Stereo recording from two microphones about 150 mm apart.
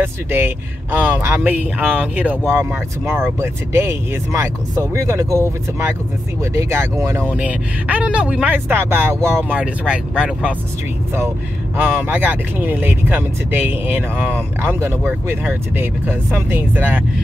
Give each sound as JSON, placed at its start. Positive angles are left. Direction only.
{"t": 0.0, "sound": "speech", "side_deg": -15}